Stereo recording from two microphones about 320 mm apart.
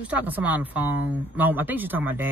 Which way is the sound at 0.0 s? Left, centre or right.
Centre.